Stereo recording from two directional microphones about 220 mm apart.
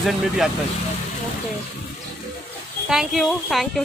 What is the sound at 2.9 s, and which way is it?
Speech, centre (ahead or behind).